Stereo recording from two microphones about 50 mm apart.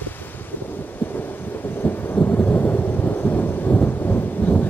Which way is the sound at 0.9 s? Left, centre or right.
Left.